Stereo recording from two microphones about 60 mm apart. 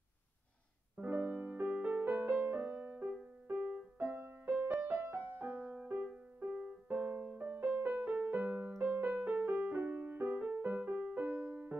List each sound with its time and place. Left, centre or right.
0.9 s music: right
2.4 s music: right
4.1 s music: right
11.2 s music: right